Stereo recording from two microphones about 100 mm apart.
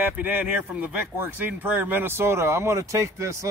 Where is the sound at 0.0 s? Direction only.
15° right (ahead or behind).